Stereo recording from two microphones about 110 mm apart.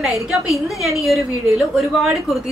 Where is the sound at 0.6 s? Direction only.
Centre (ahead or behind).